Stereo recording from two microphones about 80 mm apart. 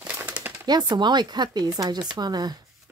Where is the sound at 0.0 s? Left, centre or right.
Centre.